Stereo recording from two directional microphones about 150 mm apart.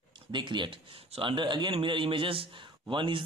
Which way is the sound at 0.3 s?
30° right (ahead or behind).